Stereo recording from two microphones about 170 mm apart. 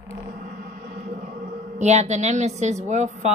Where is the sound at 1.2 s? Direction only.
45° right (ahead or behind).